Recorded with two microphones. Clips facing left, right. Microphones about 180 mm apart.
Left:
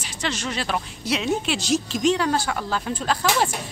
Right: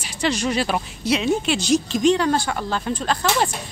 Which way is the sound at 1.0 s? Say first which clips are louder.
Right 4 dB; centre (ahead or behind).